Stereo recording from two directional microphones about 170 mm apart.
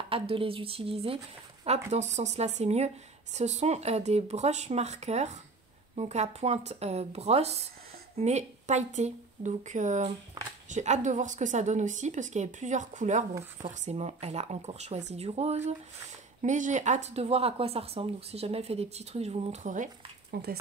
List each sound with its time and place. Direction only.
0.1 s a woman's voice: 30° right (ahead or behind); by 20.5 s 55° right (ahead or behind)